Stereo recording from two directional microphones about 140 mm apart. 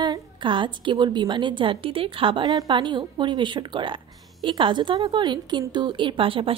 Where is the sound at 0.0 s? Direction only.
35° right (ahead or behind).